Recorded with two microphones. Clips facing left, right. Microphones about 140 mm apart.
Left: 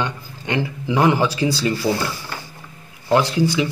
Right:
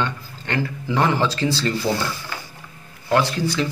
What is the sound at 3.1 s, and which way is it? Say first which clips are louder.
Speech: left 3 dB; 15° left (ahead or behind).